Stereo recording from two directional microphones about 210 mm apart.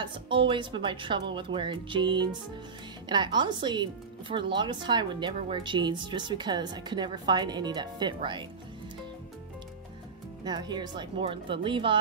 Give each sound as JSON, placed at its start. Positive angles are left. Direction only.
{"t": 0.0, "sound": "speech", "side_deg": -25}
{"t": 10.4, "sound": "speech", "side_deg": -20}